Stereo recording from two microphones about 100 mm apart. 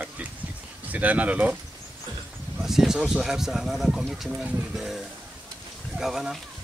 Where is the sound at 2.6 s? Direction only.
5° right (ahead or behind).